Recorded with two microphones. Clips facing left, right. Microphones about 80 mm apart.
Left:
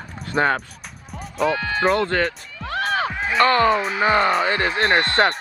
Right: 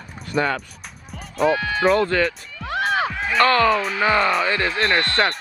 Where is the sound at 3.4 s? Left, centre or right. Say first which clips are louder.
Even; left.